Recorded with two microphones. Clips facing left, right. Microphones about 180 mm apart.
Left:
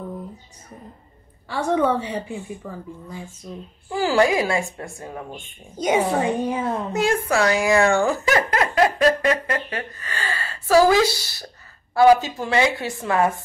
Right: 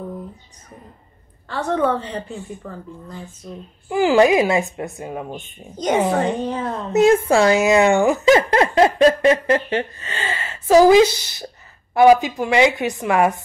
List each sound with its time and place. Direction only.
1.5 s a woman's voice: 10° left (ahead or behind)
3.9 s speech: 20° right (ahead or behind)
5.8 s a woman's voice: 10° left (ahead or behind)
6.9 s speech: 25° right (ahead or behind)